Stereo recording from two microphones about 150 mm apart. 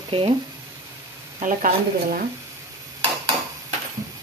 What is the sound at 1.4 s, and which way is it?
Speech, 60° right (ahead or behind).